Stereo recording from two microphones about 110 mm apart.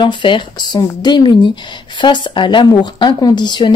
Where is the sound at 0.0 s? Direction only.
45° left (ahead or behind).